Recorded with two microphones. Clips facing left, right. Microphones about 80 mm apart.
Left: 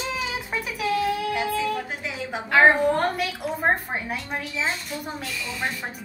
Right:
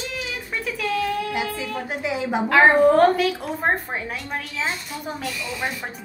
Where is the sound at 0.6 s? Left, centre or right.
Centre.